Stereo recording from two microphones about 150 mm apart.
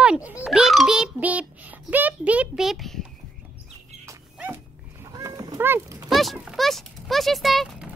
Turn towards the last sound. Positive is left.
turn(degrees=0)  # may be behind; listen again after turning